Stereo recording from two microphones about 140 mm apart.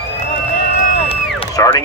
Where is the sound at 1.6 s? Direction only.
25° left (ahead or behind).